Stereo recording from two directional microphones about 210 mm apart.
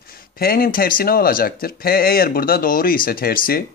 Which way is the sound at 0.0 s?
45° left (ahead or behind).